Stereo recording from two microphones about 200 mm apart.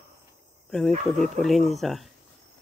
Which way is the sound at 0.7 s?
Centre (ahead or behind).